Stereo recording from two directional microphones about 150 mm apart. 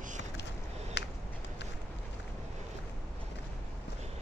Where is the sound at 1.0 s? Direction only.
90° left.